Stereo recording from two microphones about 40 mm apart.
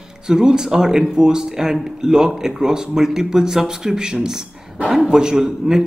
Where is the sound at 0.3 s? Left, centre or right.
Centre.